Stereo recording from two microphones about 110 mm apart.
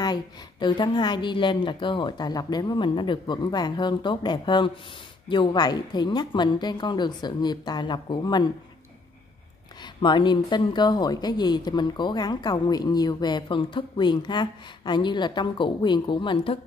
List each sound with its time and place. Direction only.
0.0 s a woman's voice: 40° left (ahead or behind)
10.0 s a woman's voice: 45° left (ahead or behind)